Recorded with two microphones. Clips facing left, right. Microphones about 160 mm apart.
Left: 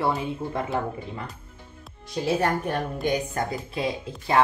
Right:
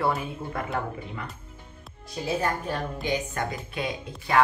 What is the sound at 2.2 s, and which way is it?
Speech, 65° left (ahead or behind).